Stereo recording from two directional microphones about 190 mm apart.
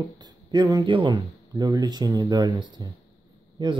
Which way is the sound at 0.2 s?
20° right (ahead or behind).